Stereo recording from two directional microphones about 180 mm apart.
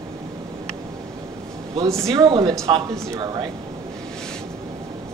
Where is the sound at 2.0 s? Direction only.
15° right (ahead or behind).